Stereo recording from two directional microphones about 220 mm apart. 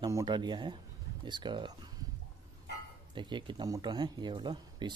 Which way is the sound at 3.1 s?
20° right (ahead or behind).